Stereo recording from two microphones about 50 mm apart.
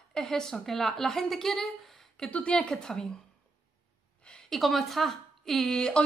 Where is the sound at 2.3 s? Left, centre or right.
Left.